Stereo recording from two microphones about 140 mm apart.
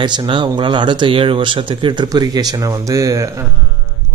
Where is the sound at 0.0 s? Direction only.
30° right (ahead or behind).